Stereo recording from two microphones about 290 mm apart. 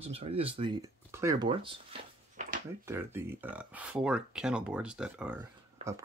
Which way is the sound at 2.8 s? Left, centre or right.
Centre.